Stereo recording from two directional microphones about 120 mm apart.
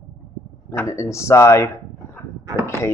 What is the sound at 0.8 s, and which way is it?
Speech, 25° left (ahead or behind).